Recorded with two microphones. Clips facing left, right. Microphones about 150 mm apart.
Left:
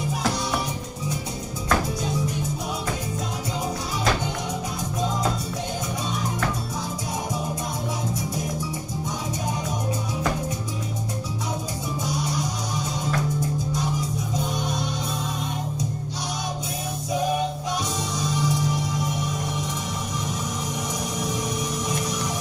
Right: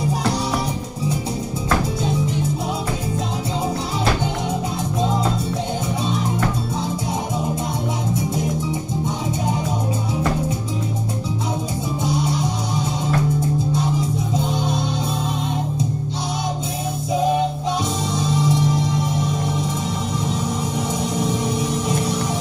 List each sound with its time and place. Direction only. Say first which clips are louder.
12.0 s music: right 6 dB; 25° right (ahead or behind)
14.3 s music: right 4 dB; 25° right (ahead or behind)
18.1 s music: right 5 dB; 30° right (ahead or behind)
21.0 s music: right 7 dB; 30° right (ahead or behind)